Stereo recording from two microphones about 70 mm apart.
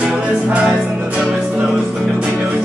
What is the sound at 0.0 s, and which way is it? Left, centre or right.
Music, centre.